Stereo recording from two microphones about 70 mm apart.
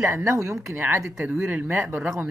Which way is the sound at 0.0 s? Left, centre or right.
Right.